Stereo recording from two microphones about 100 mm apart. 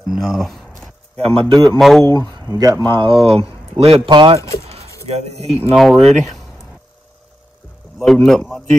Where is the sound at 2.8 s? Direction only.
55° right (ahead or behind); by 4.0 s 80° right.